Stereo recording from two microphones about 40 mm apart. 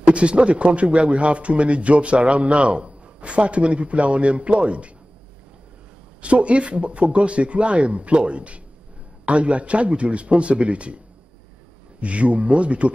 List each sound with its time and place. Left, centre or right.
0.0 s a man's voice: right
6.2 s a man's voice: right
12.0 s a man's voice: right